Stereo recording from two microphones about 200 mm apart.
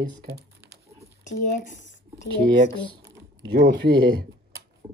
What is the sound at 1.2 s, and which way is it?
Speech, 40° left (ahead or behind).